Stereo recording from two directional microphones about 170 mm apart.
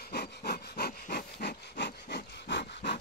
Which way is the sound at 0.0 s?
75° left (ahead or behind).